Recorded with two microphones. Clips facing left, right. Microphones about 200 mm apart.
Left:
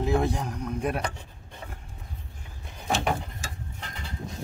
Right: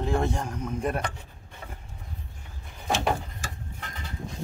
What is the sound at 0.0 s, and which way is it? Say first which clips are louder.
A man's voice: left 1 dB; 5° left (ahead or behind).